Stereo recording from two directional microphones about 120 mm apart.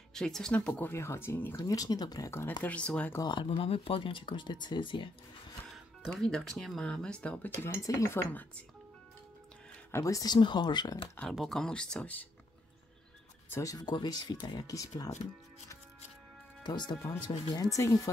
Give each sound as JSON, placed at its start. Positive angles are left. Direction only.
{"t": 0.1, "sound": "speech", "side_deg": 5}
{"t": 1.6, "sound": "speech", "side_deg": 30}
{"t": 2.6, "sound": "speech", "side_deg": 10}
{"t": 3.2, "sound": "speech", "side_deg": 40}
{"t": 3.4, "sound": "speech", "side_deg": 50}
{"t": 5.7, "sound": "speech", "side_deg": 0}
{"t": 7.6, "sound": "speech", "side_deg": 25}
{"t": 9.8, "sound": "speech", "side_deg": 25}
{"t": 11.1, "sound": "speech", "side_deg": 5}
{"t": 13.5, "sound": "speech", "side_deg": 30}
{"t": 16.6, "sound": "speech", "side_deg": 35}